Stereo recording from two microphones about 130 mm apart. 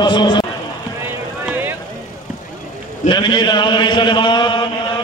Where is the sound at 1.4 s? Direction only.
15° right (ahead or behind).